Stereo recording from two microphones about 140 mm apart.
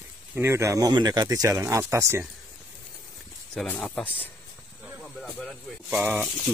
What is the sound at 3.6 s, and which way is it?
Speech, 10° left (ahead or behind).